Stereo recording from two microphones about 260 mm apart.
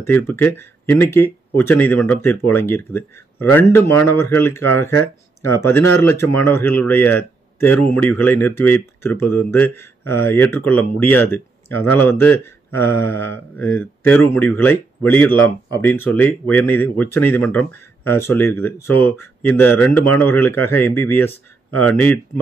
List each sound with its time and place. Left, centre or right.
0.0 s speech: centre